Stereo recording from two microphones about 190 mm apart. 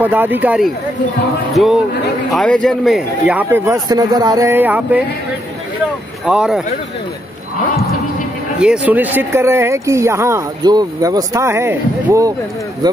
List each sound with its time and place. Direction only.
0.0 s speech: 10° right (ahead or behind)
6.2 s speech: 5° right (ahead or behind)
8.5 s speech: 5° right (ahead or behind); by 13.0 s 20° right (ahead or behind)